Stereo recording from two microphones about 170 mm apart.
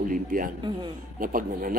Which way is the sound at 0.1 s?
55° right (ahead or behind).